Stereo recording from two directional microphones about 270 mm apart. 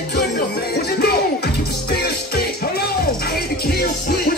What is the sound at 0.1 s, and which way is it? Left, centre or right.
Music, left.